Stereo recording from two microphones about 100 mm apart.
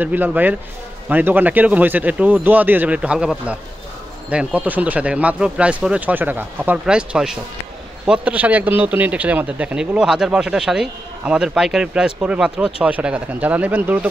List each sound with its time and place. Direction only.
0.0 s speech: 15° right (ahead or behind)